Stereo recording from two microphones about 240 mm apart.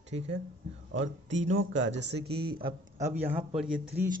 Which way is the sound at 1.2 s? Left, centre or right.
Right.